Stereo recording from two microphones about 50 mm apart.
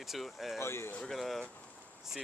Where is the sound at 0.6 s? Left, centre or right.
Left.